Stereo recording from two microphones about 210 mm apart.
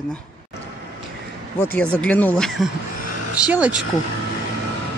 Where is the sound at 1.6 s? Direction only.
10° left (ahead or behind).